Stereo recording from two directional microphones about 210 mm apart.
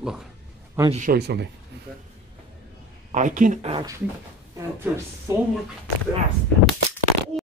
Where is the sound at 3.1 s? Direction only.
35° right (ahead or behind).